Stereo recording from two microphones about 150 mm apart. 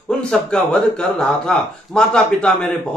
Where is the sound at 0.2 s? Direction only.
5° left (ahead or behind).